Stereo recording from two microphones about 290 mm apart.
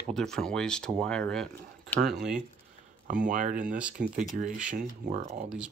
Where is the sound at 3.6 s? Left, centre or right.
Centre.